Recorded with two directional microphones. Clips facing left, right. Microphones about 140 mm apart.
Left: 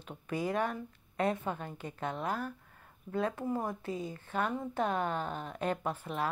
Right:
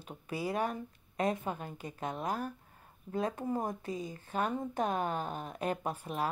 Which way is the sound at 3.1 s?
40° right (ahead or behind).